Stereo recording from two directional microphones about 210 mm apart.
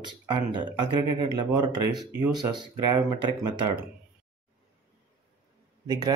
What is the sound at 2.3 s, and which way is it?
Speech, 20° right (ahead or behind).